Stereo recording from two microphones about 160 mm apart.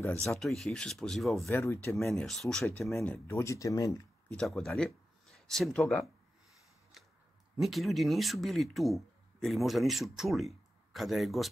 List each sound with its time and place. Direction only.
0.1 s speech: 5° left (ahead or behind)
1.5 s speech: 15° left (ahead or behind)
2.1 s speech: centre (ahead or behind)
3.0 s speech: 15° left (ahead or behind)
4.3 s speech: 5° left (ahead or behind)
7.6 s speech: centre (ahead or behind)